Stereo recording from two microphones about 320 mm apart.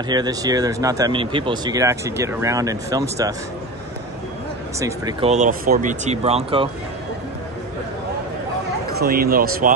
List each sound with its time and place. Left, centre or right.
0.1 s speech: centre
4.7 s speech: centre
8.9 s speech: right